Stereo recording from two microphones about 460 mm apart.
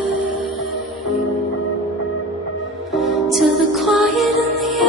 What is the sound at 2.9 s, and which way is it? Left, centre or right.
Music, centre.